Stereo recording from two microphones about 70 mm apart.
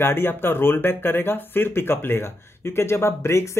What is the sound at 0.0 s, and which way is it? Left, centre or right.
Speech, left.